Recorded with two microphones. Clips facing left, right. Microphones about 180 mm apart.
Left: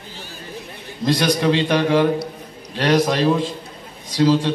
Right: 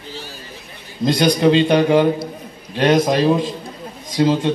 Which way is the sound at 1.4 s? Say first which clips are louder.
Right 6 dB; 20° right (ahead or behind).